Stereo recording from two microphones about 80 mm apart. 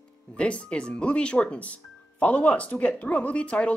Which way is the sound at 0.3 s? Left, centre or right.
Centre.